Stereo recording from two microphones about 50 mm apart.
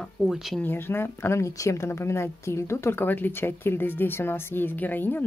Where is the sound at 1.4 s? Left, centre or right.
Left.